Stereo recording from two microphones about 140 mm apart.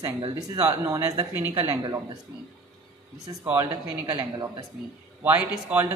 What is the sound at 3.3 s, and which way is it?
Speech, 15° right (ahead or behind).